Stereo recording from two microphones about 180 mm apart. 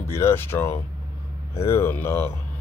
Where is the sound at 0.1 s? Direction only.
15° left (ahead or behind).